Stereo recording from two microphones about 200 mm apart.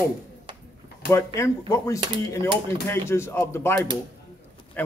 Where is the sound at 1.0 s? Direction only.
15° left (ahead or behind).